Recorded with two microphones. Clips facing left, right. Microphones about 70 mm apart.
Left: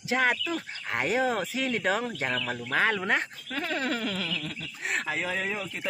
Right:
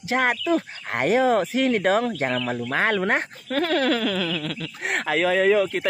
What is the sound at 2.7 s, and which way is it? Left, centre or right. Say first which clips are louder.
A woman's voice: right 3 dB; right.